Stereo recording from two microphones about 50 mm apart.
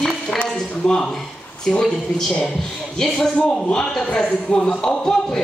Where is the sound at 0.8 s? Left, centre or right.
Centre.